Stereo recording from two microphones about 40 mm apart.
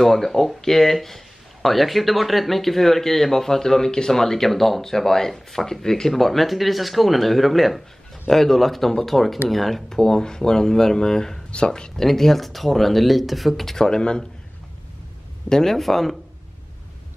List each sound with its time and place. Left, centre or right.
0.0 s speech: centre; by 11.9 s left
12.0 s speech: centre
13.7 s speech: centre
15.5 s speech: centre